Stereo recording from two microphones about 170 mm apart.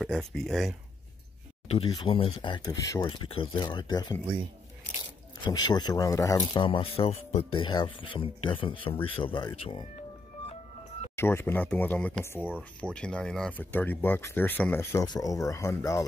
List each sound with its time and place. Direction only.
0.3 s speech: centre (ahead or behind)
1.7 s speech: 30° left (ahead or behind)
5.4 s speech: 25° left (ahead or behind)
11.1 s speech: 15° left (ahead or behind)